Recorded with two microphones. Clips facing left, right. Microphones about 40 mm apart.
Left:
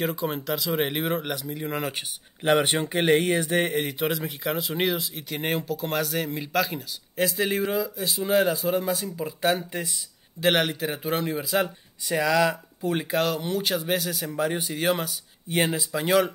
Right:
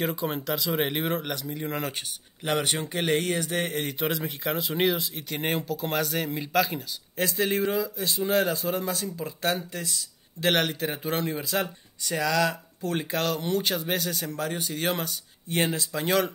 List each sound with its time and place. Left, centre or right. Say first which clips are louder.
0.0 s speech: left 1 dB; centre
2.4 s speech: left 5 dB; left
4.0 s speech: left 2 dB; centre
10.4 s speech: left 2 dB; centre